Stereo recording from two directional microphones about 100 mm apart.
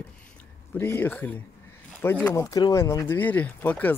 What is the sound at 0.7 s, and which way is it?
Speech, 25° left (ahead or behind).